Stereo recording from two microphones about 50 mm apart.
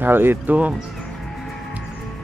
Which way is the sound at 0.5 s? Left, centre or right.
Right.